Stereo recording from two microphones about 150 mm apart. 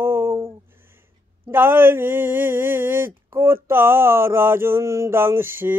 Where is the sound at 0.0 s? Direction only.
15° right (ahead or behind).